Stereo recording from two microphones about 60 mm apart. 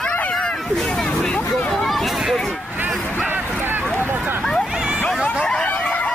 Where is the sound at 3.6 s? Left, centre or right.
Right.